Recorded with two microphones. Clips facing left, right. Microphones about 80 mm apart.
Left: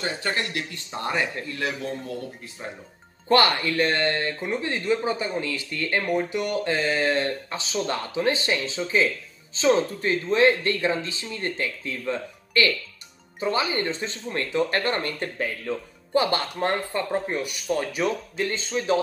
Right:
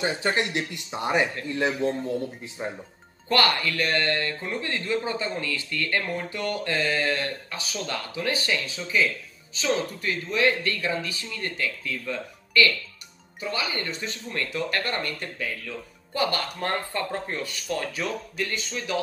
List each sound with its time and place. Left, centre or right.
0.0 s speech: centre
3.3 s speech: left